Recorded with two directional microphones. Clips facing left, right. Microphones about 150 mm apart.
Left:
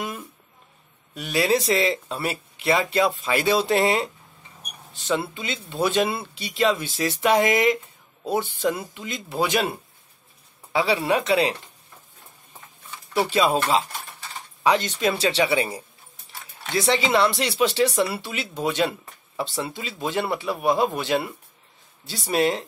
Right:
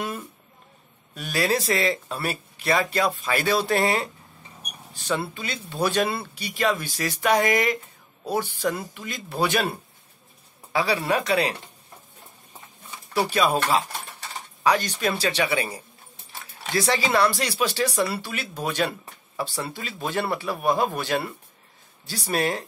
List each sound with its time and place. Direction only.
1.1 s speech: 20° left (ahead or behind)
13.3 s speech: 25° left (ahead or behind)